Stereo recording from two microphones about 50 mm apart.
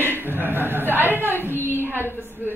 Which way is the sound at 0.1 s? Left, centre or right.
Right.